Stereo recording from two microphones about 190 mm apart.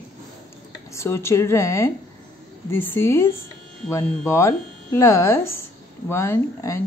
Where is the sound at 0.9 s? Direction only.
15° left (ahead or behind).